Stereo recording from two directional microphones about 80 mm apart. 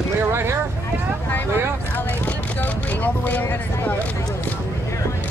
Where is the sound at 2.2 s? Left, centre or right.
Left.